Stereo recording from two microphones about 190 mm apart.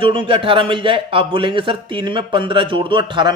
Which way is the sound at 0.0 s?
25° right (ahead or behind).